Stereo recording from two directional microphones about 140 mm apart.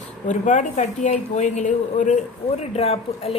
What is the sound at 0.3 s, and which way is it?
A woman's voice, 65° left (ahead or behind).